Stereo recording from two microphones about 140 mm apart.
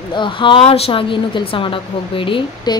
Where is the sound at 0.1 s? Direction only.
35° left (ahead or behind).